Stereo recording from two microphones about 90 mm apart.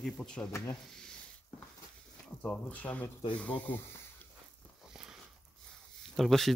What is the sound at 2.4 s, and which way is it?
Speech, 20° left (ahead or behind).